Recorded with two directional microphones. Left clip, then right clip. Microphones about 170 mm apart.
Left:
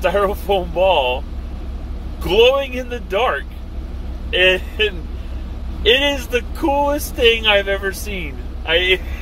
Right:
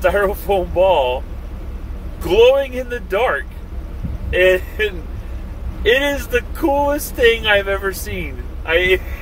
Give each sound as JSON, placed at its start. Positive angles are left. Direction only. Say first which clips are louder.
{"t": 0.0, "sound": "speech", "louder": "right 1 dB", "side_deg": -10}
{"t": 2.2, "sound": "speech", "louder": "right 2 dB", "side_deg": -10}